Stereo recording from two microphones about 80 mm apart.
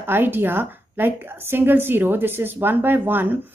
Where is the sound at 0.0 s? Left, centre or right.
Right.